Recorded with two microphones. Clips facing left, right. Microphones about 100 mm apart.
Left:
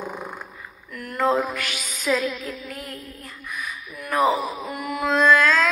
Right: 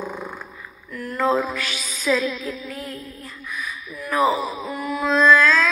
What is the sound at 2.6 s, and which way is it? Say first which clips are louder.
Music: right 3 dB; 55° left (ahead or behind).